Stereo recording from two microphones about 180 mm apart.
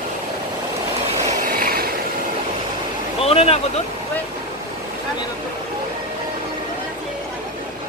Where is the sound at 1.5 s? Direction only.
55° right (ahead or behind).